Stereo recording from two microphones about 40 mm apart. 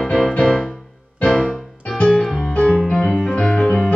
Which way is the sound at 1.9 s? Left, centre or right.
Left.